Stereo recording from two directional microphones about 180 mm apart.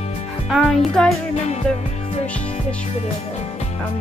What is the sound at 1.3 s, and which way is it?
Music, 40° left (ahead or behind).